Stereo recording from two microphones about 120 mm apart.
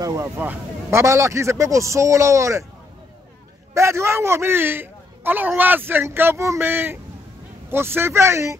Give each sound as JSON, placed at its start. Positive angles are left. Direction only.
{"t": 0.0, "sound": "a man's voice", "side_deg": -25}
{"t": 3.7, "sound": "a man's voice", "side_deg": -25}